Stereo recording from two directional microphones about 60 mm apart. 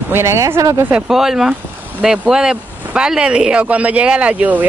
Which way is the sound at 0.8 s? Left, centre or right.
Right.